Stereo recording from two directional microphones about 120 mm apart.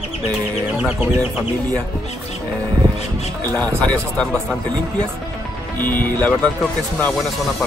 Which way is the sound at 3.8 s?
10° left (ahead or behind).